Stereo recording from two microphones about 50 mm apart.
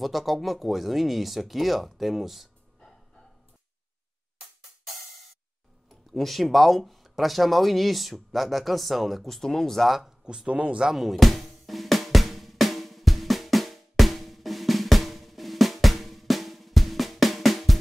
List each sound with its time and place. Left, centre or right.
0.0 s speech: centre
5.9 s speech: centre
10.2 s speech: centre
10.9 s drum: centre